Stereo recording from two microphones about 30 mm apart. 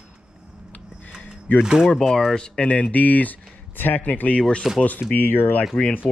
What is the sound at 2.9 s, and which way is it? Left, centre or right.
Speech, left.